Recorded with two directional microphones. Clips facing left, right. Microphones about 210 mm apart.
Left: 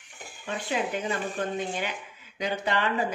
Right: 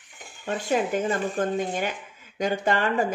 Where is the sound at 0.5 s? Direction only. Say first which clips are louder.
Right 5 dB; 45° right (ahead or behind).